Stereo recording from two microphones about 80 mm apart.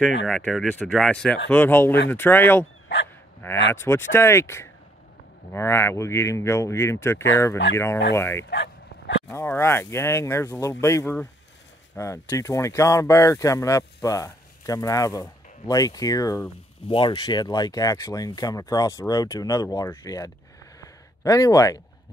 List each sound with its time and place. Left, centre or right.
0.9 s speech: centre; by 16.4 s left
16.9 s speech: left
20.8 s a sound: left